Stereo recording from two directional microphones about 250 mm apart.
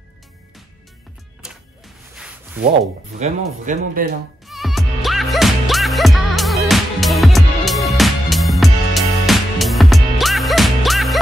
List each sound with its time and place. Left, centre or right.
1.4 s music: centre
2.1 s a sound: centre
3.2 s speech: right
4.5 s music: centre